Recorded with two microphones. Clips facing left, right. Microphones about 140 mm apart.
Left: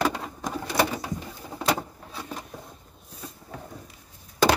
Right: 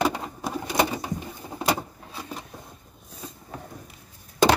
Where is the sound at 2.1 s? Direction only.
Centre (ahead or behind).